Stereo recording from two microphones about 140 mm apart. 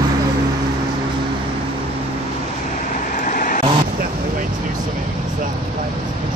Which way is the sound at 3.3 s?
75° left (ahead or behind).